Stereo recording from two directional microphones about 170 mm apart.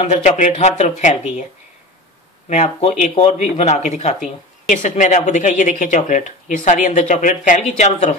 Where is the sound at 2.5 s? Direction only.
40° left (ahead or behind).